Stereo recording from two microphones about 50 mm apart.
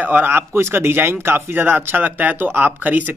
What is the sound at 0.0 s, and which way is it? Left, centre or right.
Speech, right.